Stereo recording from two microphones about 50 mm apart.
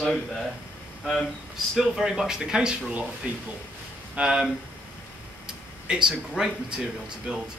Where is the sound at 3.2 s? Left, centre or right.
Right.